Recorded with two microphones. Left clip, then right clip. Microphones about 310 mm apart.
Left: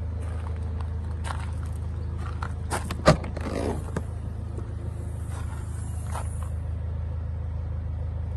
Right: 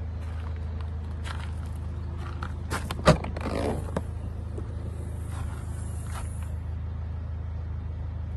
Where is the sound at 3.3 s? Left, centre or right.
Right.